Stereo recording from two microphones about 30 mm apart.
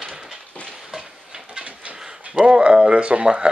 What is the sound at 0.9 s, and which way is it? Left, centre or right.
Stir, right.